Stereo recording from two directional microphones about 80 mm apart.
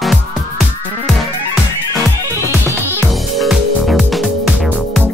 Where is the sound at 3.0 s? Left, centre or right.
Centre.